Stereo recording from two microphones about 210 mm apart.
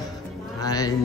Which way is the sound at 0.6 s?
15° left (ahead or behind).